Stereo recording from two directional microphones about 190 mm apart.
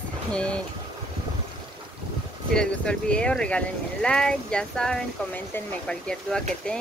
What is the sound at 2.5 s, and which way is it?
Speech, 5° left (ahead or behind).